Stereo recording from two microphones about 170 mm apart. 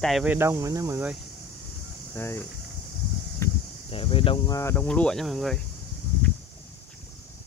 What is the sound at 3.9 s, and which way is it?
Speech, 35° left (ahead or behind).